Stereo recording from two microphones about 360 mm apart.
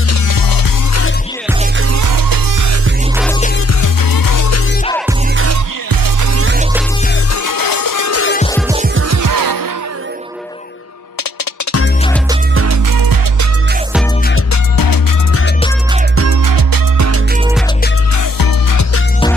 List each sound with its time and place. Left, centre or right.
0.1 s music: left
2.0 s music: right
3.8 s music: left
6.3 s music: right
7.4 s music: left
8.1 s music: left
9.0 s music: right
12.9 s music: right
14.5 s music: left
16.4 s music: right
18.1 s music: left